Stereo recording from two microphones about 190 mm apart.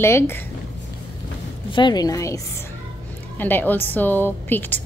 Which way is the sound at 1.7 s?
25° left (ahead or behind).